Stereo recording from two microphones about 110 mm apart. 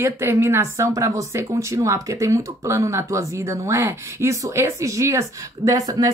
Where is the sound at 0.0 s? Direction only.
20° right (ahead or behind).